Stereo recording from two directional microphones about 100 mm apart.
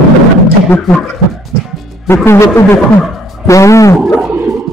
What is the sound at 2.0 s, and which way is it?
Speech, 25° left (ahead or behind).